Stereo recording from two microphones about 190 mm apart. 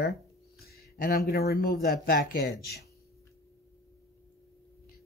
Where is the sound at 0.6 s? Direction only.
55° left (ahead or behind).